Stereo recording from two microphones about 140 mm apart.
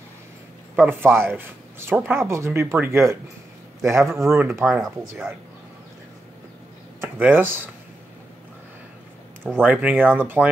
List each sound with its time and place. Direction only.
0.7 s speech: 15° right (ahead or behind)
4.6 s speech: centre (ahead or behind)
7.0 s speech: 15° right (ahead or behind)
9.6 s speech: 10° right (ahead or behind)